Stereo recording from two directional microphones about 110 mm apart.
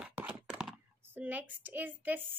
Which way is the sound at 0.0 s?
10° right (ahead or behind).